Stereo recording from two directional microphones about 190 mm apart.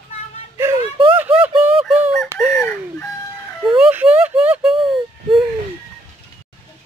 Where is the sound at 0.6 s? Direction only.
15° right (ahead or behind).